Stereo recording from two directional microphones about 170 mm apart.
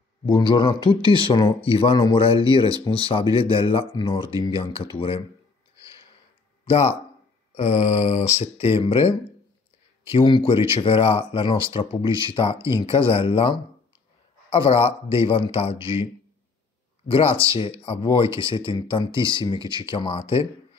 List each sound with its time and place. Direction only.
0.3 s speech: 25° left (ahead or behind)
6.6 s speech: 35° left (ahead or behind)
17.1 s speech: 35° left (ahead or behind)